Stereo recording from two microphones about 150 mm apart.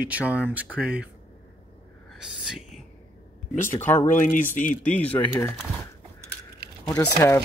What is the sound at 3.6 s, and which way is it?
Speech, 15° left (ahead or behind).